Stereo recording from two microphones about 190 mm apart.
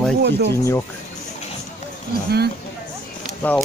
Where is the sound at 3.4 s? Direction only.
10° left (ahead or behind).